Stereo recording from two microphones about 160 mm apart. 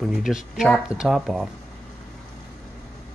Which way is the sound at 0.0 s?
5° right (ahead or behind).